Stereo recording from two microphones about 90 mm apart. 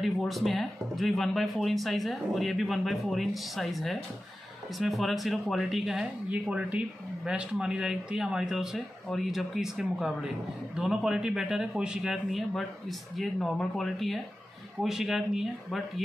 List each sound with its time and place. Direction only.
0.0 s speech: centre (ahead or behind)